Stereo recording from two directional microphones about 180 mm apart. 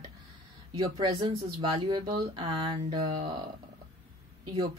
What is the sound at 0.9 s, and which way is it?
A woman's voice, 25° right (ahead or behind).